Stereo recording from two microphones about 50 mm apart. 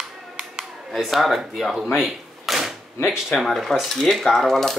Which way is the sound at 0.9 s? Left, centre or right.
Centre.